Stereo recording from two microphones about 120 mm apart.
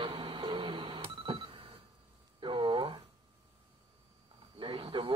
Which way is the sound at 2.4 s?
40° right (ahead or behind).